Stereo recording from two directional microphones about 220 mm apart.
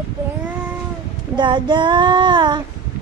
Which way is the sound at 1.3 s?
20° right (ahead or behind).